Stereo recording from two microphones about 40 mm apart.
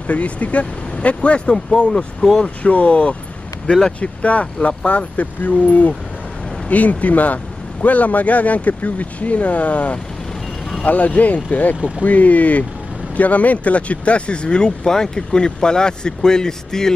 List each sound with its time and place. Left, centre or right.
0.0 s speech: left; by 16.9 s centre